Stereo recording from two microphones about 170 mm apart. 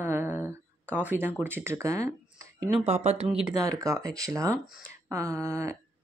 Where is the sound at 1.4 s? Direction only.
15° right (ahead or behind).